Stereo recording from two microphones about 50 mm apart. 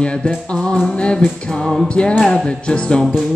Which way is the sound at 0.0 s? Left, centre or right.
Left.